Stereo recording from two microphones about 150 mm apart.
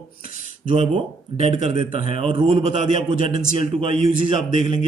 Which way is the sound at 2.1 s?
35° right (ahead or behind).